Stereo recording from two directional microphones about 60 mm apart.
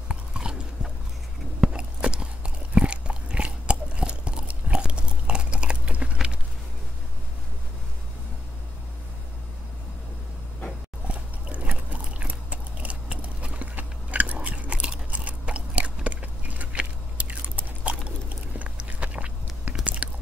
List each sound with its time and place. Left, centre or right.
0.1 s chewing: centre
1.6 s biting: centre
11.1 s biting: right
18.6 s walk: right
19.8 s biting: right